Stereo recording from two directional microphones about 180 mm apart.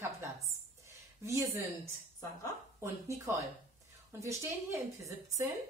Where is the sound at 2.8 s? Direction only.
15° right (ahead or behind).